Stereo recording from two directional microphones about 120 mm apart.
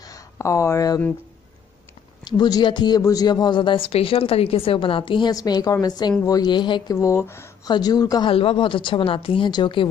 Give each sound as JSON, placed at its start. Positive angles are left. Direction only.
{"t": 0.0, "sound": "a sound", "side_deg": 25}
{"t": 2.2, "sound": "a man's voice", "side_deg": 35}
{"t": 5.3, "sound": "a woman's voice", "side_deg": 30}
{"t": 7.0, "sound": "speech", "side_deg": 25}
{"t": 7.6, "sound": "a woman's voice", "side_deg": 35}
{"t": 8.3, "sound": "a man's voice", "side_deg": 50}